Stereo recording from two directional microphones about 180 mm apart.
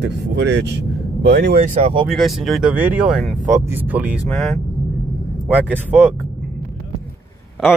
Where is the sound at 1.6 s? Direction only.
40° right (ahead or behind).